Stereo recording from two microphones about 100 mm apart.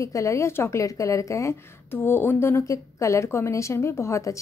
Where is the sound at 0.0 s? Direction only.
30° left (ahead or behind).